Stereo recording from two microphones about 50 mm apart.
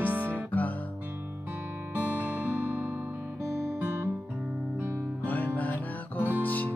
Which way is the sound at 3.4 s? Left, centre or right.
Right.